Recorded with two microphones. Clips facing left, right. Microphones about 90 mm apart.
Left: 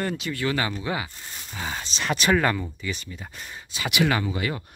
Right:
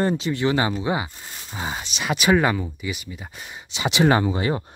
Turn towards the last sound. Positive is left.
turn(degrees=-30)  # may be behind; listen again after turning